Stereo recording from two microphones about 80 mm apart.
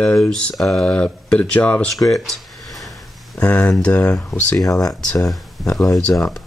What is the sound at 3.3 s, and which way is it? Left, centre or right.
Speech, centre.